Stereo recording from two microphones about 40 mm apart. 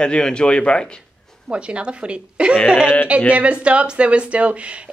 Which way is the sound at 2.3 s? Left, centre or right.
Right.